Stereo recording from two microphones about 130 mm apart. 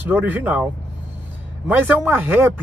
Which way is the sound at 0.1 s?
10° right (ahead or behind).